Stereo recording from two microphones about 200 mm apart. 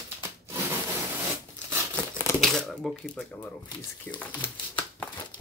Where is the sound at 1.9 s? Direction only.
5° left (ahead or behind).